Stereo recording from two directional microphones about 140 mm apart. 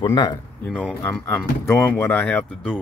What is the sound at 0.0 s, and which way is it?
Speech, 35° left (ahead or behind).